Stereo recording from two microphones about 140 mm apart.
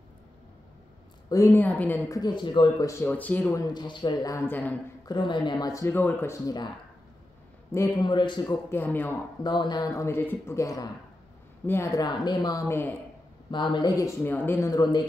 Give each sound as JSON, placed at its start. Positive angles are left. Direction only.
{"t": 1.3, "sound": "speech", "side_deg": 20}
{"t": 2.0, "sound": "speech", "side_deg": 25}
{"t": 2.9, "sound": "speech", "side_deg": 15}
{"t": 3.5, "sound": "speech", "side_deg": 30}
{"t": 5.0, "sound": "speech", "side_deg": 30}
{"t": 8.0, "sound": "speech", "side_deg": 35}
{"t": 8.6, "sound": "speech", "side_deg": 15}
{"t": 9.4, "sound": "speech", "side_deg": 30}
{"t": 13.5, "sound": "speech", "side_deg": 35}